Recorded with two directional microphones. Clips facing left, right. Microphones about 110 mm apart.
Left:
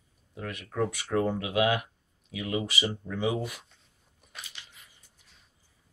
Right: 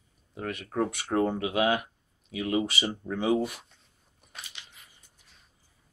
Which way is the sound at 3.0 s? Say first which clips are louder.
Right 6 dB; 40° right (ahead or behind).